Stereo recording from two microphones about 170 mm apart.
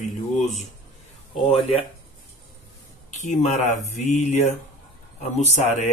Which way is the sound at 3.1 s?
45° left (ahead or behind).